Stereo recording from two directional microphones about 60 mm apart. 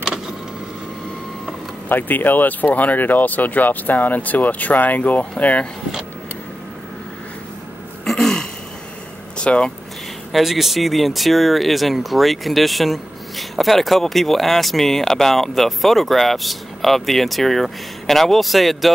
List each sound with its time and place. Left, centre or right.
1.9 s speech: left
8.0 s throat clearing: centre
9.4 s speech: centre
10.3 s speech: centre